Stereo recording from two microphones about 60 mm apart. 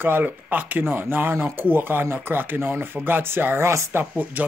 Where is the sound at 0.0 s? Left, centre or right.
Right.